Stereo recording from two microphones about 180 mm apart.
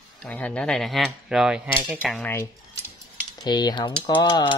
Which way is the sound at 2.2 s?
15° left (ahead or behind).